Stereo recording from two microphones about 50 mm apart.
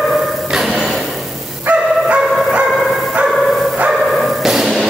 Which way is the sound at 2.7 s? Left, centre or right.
Centre.